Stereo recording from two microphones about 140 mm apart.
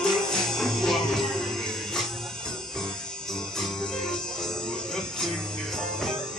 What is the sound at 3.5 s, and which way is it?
Music, centre (ahead or behind).